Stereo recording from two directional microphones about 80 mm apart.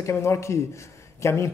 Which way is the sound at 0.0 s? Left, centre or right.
Left.